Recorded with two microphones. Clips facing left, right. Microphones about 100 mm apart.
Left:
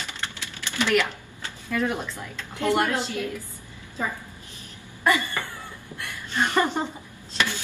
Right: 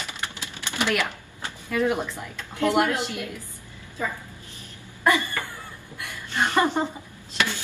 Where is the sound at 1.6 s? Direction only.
15° right (ahead or behind).